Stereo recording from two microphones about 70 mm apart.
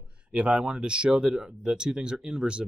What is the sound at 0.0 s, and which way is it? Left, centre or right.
Speech, centre.